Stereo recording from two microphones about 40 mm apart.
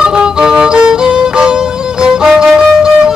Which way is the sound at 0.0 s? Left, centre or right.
Centre.